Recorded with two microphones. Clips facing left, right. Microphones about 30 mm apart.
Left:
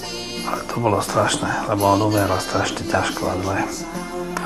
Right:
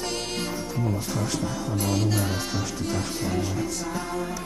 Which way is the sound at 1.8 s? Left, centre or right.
Centre.